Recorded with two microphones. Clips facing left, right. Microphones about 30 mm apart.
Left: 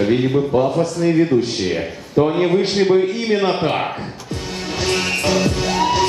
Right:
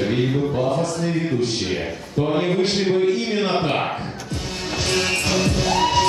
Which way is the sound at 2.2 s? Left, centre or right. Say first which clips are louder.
Even; centre.